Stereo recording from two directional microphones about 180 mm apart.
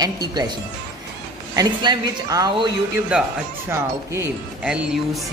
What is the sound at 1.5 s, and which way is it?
A woman's voice, 20° right (ahead or behind).